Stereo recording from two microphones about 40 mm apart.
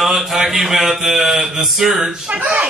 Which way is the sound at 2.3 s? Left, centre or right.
Right.